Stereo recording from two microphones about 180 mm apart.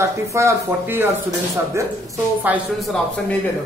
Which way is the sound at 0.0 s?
15° right (ahead or behind).